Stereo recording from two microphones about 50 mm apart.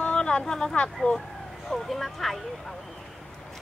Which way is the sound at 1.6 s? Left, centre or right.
Centre.